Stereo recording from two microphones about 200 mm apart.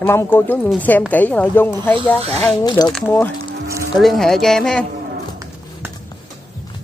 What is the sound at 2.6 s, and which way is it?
Speech, 20° left (ahead or behind).